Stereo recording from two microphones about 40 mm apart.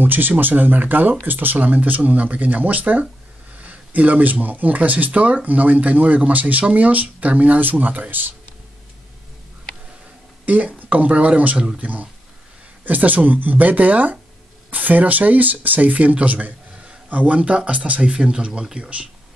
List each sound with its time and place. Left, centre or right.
0.0 s speech: right
10.4 s speech: right
11.5 s speech: centre
11.8 s a man's voice: right